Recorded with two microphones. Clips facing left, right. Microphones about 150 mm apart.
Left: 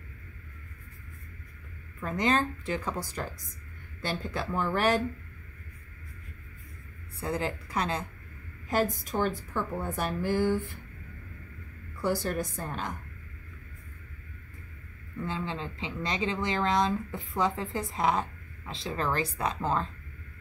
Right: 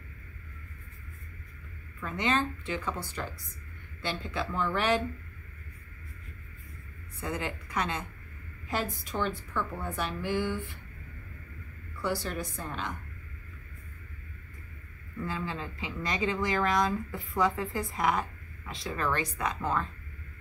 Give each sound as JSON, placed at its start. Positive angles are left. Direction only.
{"t": 2.0, "sound": "speech", "side_deg": 40}
{"t": 7.2, "sound": "a woman's voice", "side_deg": 35}
{"t": 12.0, "sound": "a woman's voice", "side_deg": 45}
{"t": 15.2, "sound": "speech", "side_deg": 25}